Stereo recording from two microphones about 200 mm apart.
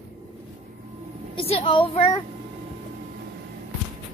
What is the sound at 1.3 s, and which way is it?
Speech, 30° left (ahead or behind).